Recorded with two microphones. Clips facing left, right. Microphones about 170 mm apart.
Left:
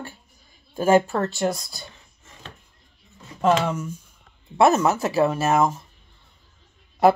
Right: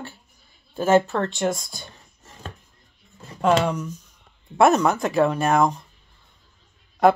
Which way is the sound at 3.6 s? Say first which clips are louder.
Right 1 dB; 5° left (ahead or behind).